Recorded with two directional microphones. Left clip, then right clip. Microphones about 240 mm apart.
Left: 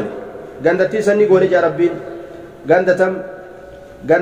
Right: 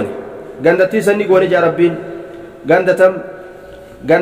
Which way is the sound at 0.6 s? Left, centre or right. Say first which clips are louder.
Right 3 dB; right.